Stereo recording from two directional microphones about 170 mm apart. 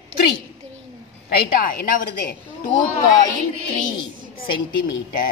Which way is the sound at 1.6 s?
60° left (ahead or behind).